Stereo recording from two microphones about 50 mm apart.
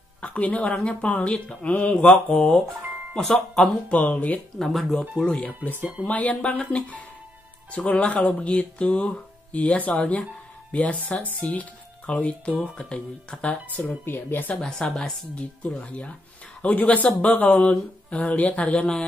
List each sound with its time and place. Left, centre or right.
0.2 s speech: left
2.3 s speech: centre
3.9 s speech: left
4.6 s speech: centre
5.1 s speech: centre
5.4 s speech: left
13.7 s speech: left
14.5 s speech: centre
15.8 s speech: left